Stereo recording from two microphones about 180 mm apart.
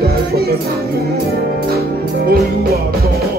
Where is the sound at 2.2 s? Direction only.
55° right (ahead or behind).